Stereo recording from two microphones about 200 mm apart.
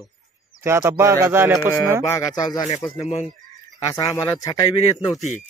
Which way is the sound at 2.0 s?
15° left (ahead or behind).